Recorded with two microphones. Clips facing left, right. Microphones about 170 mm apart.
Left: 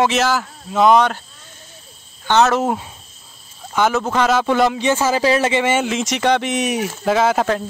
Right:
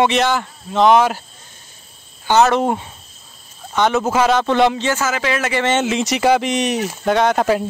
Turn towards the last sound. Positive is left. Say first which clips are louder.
# right 1 dB
turn(degrees=-5)  # may be behind; listen again after turning